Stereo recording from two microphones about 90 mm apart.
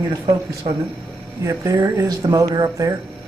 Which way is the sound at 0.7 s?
85° right.